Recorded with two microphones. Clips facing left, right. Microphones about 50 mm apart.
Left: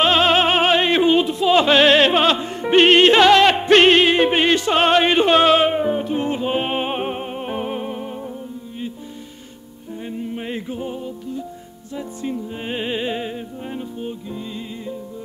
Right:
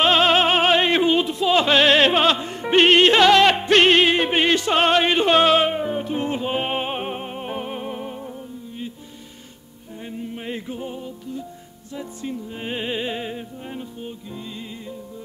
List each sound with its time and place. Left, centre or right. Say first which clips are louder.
0.0 s music: left 1 dB; centre
0.7 s opera: left 1 dB; centre
1.0 s music: left 3 dB; centre
2.0 s music: left 2 dB; centre
3.6 s music: left 3 dB; left
3.9 s music: left 2 dB; centre
6.0 s music: left 3 dB; centre
7.9 s music: left 2 dB; centre
10.0 s music: left 3 dB; centre
12.5 s music: right 1 dB; centre